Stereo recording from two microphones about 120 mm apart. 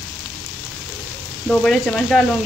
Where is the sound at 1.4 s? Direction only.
5° left (ahead or behind).